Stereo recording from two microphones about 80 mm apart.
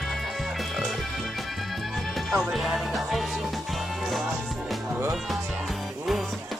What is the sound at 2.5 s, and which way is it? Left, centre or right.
Speech, centre.